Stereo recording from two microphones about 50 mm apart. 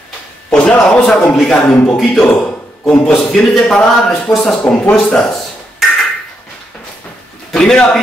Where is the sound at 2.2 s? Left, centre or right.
Left.